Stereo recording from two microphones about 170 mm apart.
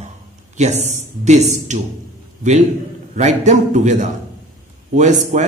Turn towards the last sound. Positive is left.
turn(degrees=-45)  # may be behind; listen again after turning